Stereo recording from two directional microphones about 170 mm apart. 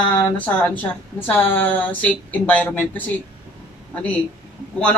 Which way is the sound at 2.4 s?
10° left (ahead or behind).